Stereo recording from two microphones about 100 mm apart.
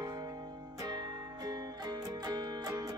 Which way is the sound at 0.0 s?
40° right (ahead or behind).